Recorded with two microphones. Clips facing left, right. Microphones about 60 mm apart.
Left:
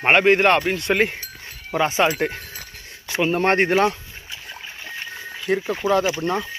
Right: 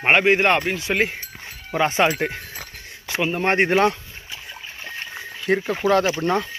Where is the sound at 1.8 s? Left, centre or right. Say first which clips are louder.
Even; right.